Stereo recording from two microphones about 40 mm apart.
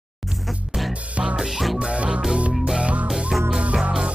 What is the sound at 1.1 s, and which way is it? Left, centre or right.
Music, right.